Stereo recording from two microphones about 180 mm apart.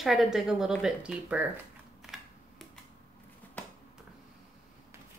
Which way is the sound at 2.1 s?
5° right (ahead or behind).